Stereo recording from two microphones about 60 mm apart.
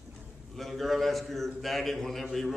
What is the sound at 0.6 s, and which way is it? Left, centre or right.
A man's voice, centre.